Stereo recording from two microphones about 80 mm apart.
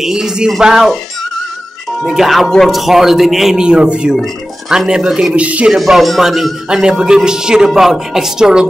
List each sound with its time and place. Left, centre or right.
0.0 s a man's voice: centre
2.0 s a man's voice: centre
5.7 s a man's voice: centre